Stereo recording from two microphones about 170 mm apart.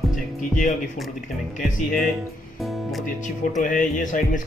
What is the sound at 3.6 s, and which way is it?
Speech, 50° left (ahead or behind).